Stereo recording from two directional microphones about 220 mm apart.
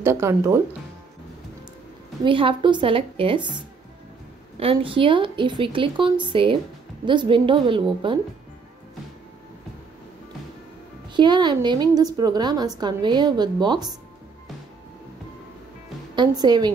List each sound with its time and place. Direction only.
0.0 s speech: 10° right (ahead or behind)
2.2 s a woman's voice: 25° right (ahead or behind)
11.1 s a woman's voice: 20° right (ahead or behind)
16.2 s a woman's voice: 20° right (ahead or behind)